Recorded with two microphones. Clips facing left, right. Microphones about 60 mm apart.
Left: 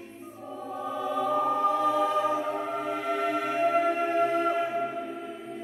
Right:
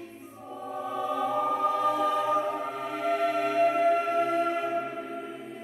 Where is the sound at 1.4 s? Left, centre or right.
Right.